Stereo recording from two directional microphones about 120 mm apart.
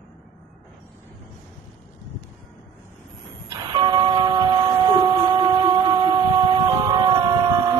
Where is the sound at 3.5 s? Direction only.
35° right (ahead or behind).